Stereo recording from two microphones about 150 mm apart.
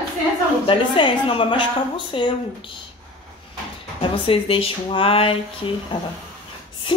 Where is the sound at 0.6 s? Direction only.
35° left (ahead or behind).